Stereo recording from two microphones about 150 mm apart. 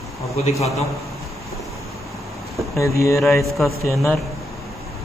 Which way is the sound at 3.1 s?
Centre (ahead or behind).